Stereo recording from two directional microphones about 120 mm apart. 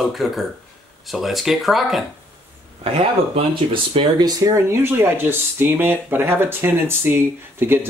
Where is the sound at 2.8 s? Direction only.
50° right (ahead or behind); by 7.9 s 20° right (ahead or behind).